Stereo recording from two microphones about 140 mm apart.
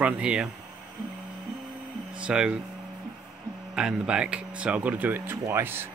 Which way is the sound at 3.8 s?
5° right (ahead or behind).